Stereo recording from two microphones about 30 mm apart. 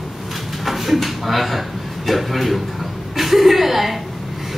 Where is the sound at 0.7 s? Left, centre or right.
Centre.